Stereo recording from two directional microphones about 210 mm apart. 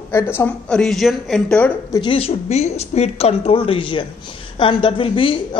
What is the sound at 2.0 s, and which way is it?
A woman's voice, 25° left (ahead or behind).